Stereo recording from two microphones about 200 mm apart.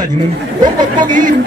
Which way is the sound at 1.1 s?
40° right (ahead or behind).